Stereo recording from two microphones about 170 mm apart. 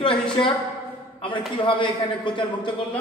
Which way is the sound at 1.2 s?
30° left (ahead or behind).